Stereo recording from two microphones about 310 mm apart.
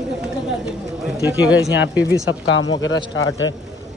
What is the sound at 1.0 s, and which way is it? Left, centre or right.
Speech, centre.